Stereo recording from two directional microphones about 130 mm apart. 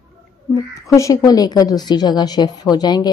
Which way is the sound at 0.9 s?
25° left (ahead or behind).